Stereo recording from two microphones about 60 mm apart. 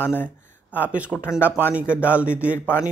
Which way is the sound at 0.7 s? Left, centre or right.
Right.